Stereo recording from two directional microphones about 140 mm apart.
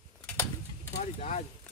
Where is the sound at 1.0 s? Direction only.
50° left (ahead or behind).